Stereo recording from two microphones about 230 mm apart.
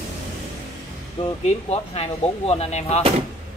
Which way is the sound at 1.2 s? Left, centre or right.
Left.